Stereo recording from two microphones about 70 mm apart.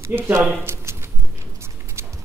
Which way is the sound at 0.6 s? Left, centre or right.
Right.